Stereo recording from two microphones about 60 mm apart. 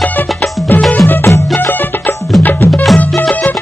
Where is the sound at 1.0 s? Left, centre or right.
Left.